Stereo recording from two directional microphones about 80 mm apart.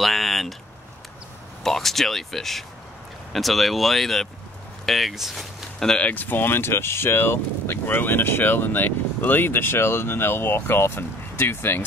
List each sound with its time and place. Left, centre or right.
0.0 s a sound: centre
1.6 s speech: centre
6.0 s speech: left